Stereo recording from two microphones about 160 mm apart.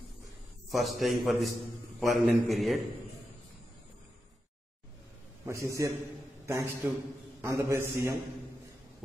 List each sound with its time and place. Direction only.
0.7 s a man's voice: centre (ahead or behind)
5.4 s a man's voice: 20° right (ahead or behind)